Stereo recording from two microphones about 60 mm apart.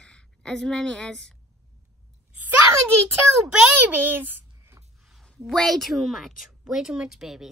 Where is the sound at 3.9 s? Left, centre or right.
Right.